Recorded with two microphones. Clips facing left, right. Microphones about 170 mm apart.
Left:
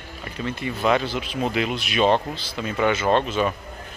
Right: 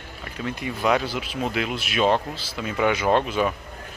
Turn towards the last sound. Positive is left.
turn(degrees=-10)  # may be behind; listen again after turning